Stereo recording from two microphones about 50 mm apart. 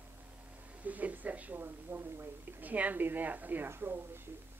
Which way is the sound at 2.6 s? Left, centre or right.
Right.